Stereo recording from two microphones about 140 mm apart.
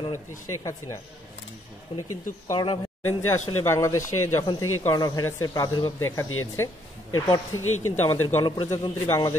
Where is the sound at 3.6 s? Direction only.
20° left (ahead or behind).